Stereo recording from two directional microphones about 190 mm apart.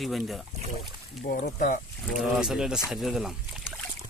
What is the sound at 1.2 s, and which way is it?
Speech, 55° left (ahead or behind).